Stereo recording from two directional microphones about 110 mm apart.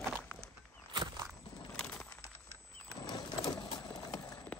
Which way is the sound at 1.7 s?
5° left (ahead or behind).